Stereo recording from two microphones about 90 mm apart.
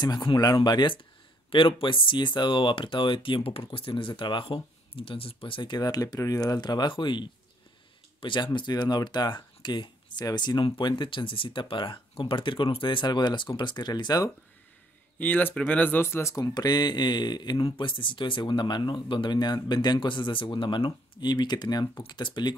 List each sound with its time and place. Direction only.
0.0 s speech: 50° left (ahead or behind)
0.7 s speech: 60° left (ahead or behind)
1.5 s speech: 70° left (ahead or behind)
5.6 s speech: 50° left (ahead or behind)
15.1 s speech: 20° left (ahead or behind); by 17.6 s 55° left (ahead or behind)
17.6 s speech: 65° left (ahead or behind)